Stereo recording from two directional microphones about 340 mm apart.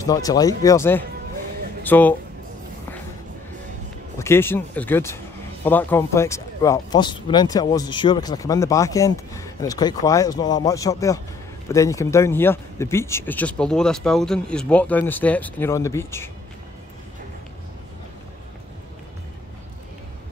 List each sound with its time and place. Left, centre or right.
0.0 s speech: centre
4.2 s speech: centre